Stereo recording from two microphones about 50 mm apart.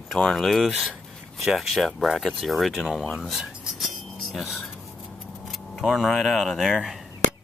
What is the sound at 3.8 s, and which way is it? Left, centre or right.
Chink, centre.